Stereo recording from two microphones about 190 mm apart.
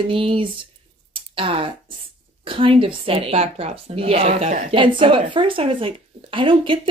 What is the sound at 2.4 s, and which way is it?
Speech, 30° right (ahead or behind).